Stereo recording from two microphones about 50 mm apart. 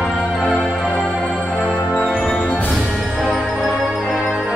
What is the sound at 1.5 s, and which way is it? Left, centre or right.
Music, centre.